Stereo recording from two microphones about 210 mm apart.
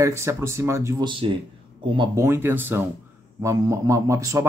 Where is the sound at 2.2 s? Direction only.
10° right (ahead or behind).